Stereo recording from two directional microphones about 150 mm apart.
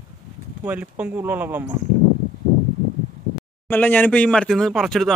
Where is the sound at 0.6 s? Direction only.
10° right (ahead or behind).